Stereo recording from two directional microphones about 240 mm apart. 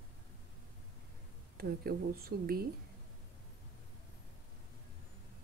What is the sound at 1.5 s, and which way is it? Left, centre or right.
Speech, right.